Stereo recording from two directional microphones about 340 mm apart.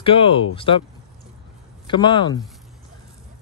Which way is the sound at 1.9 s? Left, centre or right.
Centre.